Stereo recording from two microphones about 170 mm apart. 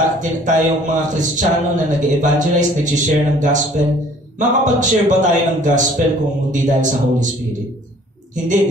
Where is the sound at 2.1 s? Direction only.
45° right (ahead or behind).